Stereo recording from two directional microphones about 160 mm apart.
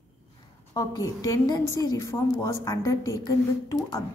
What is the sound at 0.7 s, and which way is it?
A woman's voice, 25° left (ahead or behind).